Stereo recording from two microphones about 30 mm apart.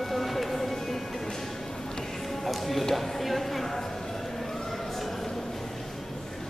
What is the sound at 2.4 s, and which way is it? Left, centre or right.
Music, centre.